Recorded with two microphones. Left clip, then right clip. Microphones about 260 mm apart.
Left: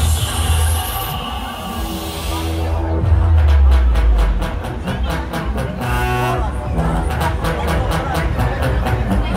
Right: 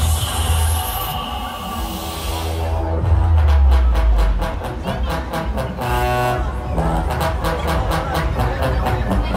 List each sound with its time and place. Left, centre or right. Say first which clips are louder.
5.9 s music: right 1 dB; right